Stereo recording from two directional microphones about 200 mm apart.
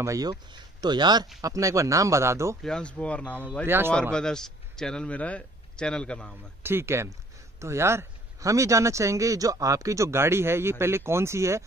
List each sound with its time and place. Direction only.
0.0 s speech: 15° right (ahead or behind)
2.6 s speech: 5° left (ahead or behind)
3.6 s speech: 10° right (ahead or behind)
4.1 s speech: 5° left (ahead or behind)
6.6 s speech: 10° right (ahead or behind)